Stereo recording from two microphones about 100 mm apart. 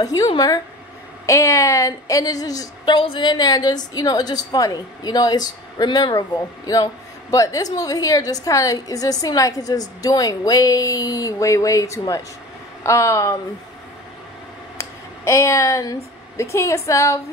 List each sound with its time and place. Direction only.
0.0 s a woman's voice: 35° left (ahead or behind)
14.8 s speech: 30° left (ahead or behind)